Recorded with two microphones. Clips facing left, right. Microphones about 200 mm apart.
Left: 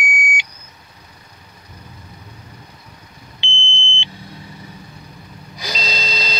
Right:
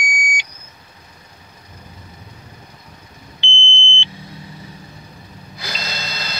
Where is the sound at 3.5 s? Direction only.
15° left (ahead or behind).